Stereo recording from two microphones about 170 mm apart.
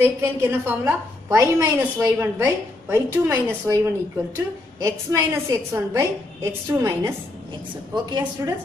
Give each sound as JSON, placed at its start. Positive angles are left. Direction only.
{"t": 0.0, "sound": "a woman's voice", "side_deg": -15}
{"t": 4.8, "sound": "a woman's voice", "side_deg": -15}